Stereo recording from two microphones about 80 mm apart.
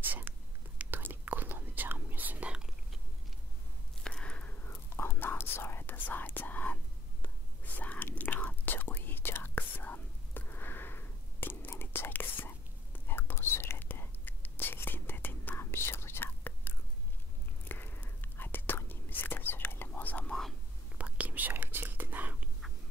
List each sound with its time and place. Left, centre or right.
0.3 s whispering: right
4.0 s whispering: centre
21.0 s whispering: centre